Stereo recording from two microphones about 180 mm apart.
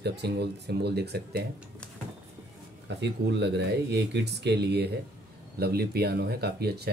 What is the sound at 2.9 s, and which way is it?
Speech, 75° right (ahead or behind).